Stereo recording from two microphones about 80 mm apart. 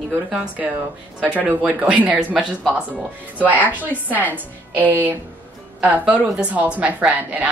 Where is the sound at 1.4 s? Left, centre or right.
Centre.